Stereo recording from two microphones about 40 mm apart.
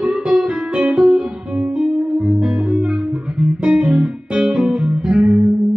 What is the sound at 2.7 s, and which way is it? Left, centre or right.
Music, right.